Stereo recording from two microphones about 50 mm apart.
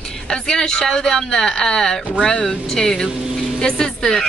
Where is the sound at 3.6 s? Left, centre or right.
Centre.